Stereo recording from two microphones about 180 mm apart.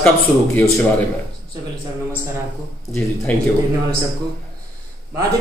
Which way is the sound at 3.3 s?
5° left (ahead or behind).